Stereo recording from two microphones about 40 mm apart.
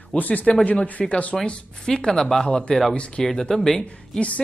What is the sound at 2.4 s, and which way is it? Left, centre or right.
Speech, left.